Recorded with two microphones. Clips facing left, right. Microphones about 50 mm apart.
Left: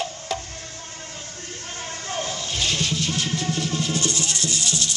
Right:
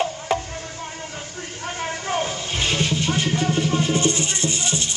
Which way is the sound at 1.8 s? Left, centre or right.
Right.